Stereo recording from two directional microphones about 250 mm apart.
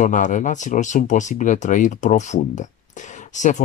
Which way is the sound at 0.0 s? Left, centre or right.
Left.